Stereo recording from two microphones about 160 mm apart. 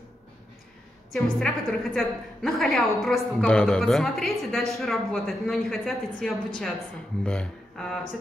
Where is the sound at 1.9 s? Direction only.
Centre (ahead or behind).